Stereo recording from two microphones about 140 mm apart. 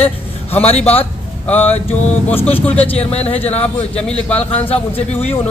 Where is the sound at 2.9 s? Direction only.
45° left (ahead or behind).